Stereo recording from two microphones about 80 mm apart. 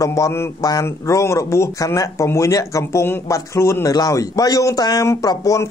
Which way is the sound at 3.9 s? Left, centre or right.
Left.